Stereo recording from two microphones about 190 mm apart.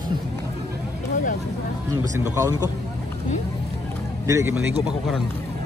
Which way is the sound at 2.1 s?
15° right (ahead or behind).